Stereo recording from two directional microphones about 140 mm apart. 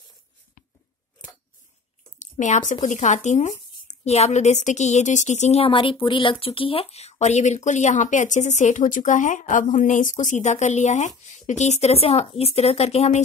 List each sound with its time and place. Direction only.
2.1 s speech: 60° left (ahead or behind)